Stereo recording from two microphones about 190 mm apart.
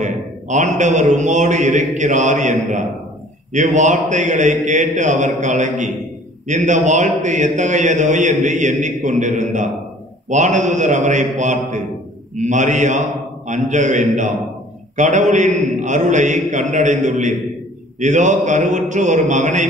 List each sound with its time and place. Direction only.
0.0 s a man's voice: 40° right (ahead or behind)